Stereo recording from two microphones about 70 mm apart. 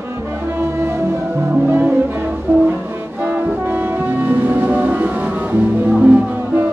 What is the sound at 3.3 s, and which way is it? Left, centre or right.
Brass instrument, right.